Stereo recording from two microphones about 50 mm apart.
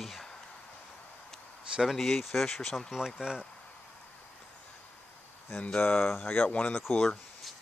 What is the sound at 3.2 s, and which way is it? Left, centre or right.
Speech, centre.